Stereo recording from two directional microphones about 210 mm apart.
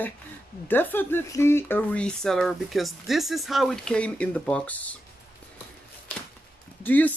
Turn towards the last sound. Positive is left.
turn(degrees=10)  # may be behind; listen again after turning